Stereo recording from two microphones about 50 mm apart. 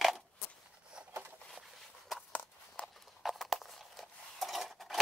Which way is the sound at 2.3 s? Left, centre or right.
Left.